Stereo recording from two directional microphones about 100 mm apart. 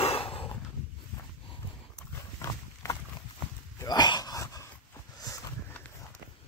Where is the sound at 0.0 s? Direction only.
75° left (ahead or behind).